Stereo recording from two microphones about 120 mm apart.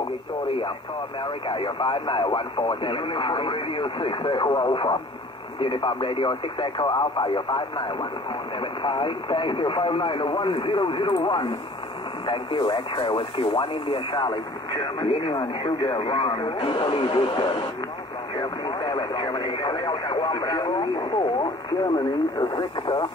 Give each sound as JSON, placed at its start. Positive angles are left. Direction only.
{"t": 1.2, "sound": "speech", "side_deg": 45}
{"t": 12.3, "sound": "speech", "side_deg": 45}
{"t": 17.0, "sound": "speech", "side_deg": 35}
{"t": 21.9, "sound": "speech", "side_deg": 35}